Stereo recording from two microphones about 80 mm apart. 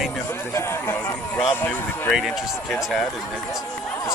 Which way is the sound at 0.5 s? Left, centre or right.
Left.